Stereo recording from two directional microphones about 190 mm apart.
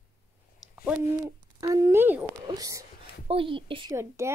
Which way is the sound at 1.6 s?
15° right (ahead or behind).